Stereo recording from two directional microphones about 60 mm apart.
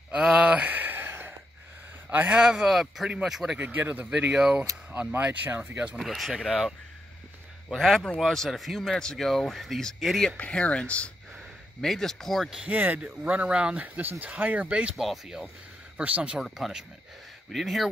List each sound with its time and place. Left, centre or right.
0.1 s a sound: right
2.0 s speech: right
2.4 s speech: centre
3.5 s speech: right
4.3 s speech: centre
5.2 s speech: right
5.9 s speech: centre
7.7 s speech: centre
10.3 s speech: left
11.8 s speech: centre
12.6 s speech: right
15.0 s speech: centre
16.0 s speech: right
16.3 s speech: centre